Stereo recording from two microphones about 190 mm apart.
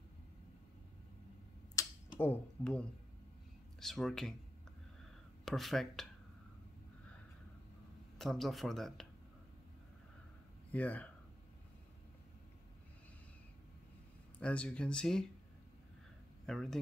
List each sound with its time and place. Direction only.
1.8 s a sound: 20° left (ahead or behind)
2.1 s speech: 10° left (ahead or behind)
5.4 s speech: centre (ahead or behind)
8.2 s speech: centre (ahead or behind)
10.7 s speech: 5° left (ahead or behind)
14.4 s speech: 5° left (ahead or behind)
16.4 s speech: centre (ahead or behind)